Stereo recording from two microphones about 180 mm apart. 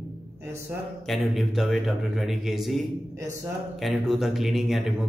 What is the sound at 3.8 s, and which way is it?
Speech, centre (ahead or behind).